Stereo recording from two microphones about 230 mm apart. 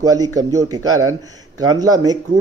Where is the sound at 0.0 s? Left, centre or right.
Centre.